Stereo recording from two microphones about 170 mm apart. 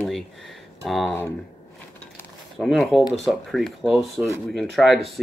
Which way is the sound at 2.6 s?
Centre (ahead or behind).